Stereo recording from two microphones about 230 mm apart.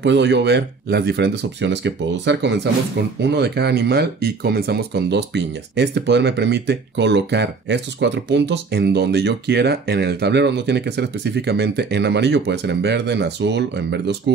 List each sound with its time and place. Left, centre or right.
0.0 s speech: right